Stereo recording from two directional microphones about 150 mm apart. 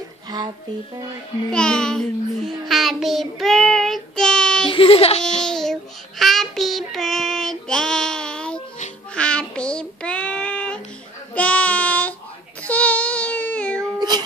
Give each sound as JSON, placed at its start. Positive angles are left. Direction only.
{"t": 1.5, "sound": "child singing", "side_deg": 5}
{"t": 4.6, "sound": "speech", "side_deg": 35}
{"t": 5.4, "sound": "child singing", "side_deg": 5}
{"t": 11.3, "sound": "a sound", "side_deg": 10}
{"t": 12.6, "sound": "child singing", "side_deg": 10}
{"t": 13.9, "sound": "music", "side_deg": -25}